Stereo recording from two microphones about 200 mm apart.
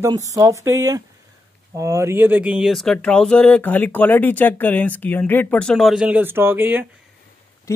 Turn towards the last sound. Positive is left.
turn(degrees=-10)  # may be behind; listen again after turning